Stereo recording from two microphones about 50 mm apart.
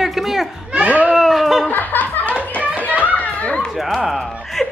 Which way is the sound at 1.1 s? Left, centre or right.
Centre.